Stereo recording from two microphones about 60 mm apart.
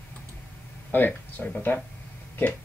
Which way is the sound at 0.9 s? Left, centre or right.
Left.